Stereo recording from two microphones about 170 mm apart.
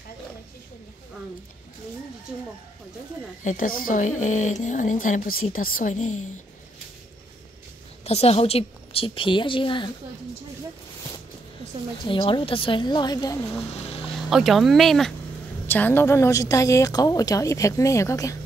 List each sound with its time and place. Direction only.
3.4 s speech: 55° left (ahead or behind)
8.0 s a woman's voice: 35° left (ahead or behind)
12.1 s a woman's voice: 30° left (ahead or behind)
14.3 s a woman's voice: centre (ahead or behind); by 18.3 s 20° left (ahead or behind)